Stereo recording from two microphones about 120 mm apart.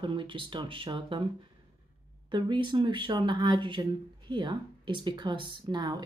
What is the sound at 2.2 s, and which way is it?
Speech, 40° right (ahead or behind).